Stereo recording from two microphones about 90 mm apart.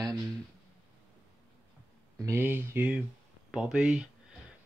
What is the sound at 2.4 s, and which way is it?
Speech, 20° right (ahead or behind).